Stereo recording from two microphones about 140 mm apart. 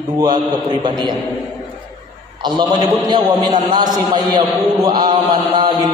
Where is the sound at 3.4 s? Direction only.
30° right (ahead or behind).